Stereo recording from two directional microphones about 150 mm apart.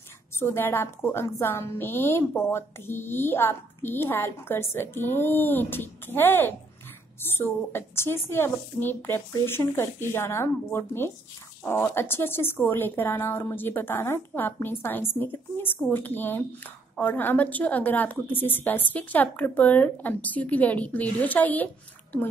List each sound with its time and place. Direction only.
0.4 s a woman's voice: 15° left (ahead or behind)